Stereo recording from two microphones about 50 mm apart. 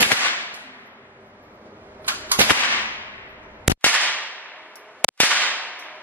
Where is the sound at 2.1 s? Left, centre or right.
Right.